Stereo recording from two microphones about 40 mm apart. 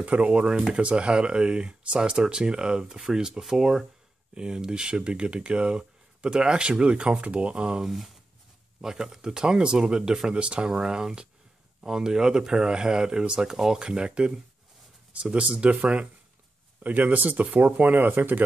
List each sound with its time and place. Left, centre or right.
0.0 s speech: right
7.9 s speech: centre
8.8 s speech: centre; by 16.1 s right
16.8 s speech: right